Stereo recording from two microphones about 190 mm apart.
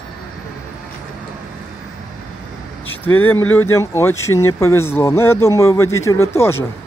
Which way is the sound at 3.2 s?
10° left (ahead or behind).